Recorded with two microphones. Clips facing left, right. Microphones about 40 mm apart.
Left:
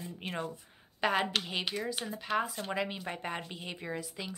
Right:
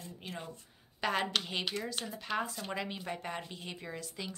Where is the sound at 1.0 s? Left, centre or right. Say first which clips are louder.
Left 2 dB; centre.